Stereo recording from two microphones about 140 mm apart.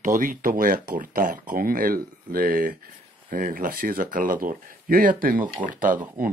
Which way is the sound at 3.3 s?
80° right.